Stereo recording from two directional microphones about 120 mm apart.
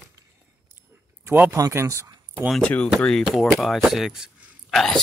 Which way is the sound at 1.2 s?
15° right (ahead or behind).